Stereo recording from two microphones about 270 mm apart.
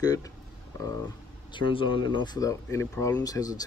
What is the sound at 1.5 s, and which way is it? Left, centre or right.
Speech, centre.